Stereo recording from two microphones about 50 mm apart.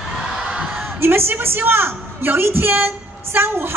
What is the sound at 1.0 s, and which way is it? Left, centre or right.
A woman's voice, right.